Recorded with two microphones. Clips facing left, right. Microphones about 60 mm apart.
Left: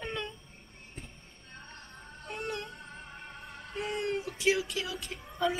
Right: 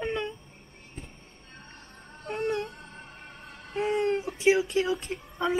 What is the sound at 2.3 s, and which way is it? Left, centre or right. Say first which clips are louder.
Whimper: right 8 dB; right.